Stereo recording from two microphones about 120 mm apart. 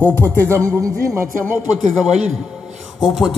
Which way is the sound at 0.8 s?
25° right (ahead or behind).